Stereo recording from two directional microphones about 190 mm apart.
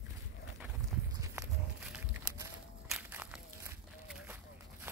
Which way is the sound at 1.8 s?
5° right (ahead or behind).